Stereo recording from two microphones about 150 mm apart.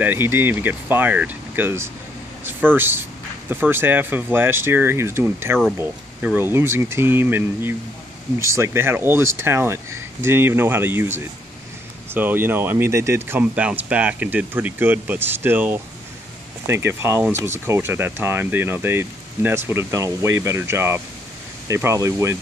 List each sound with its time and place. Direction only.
0.0 s speech: 15° right (ahead or behind)